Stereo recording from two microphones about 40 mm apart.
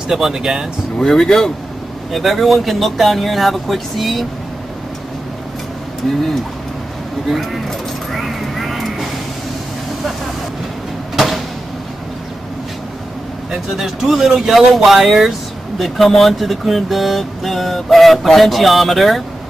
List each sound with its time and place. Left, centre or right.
0.1 s speech: centre
0.9 s speech: centre
2.1 s speech: centre
8.1 s vehicle: centre
11.1 s a sound: centre
13.5 s speech: centre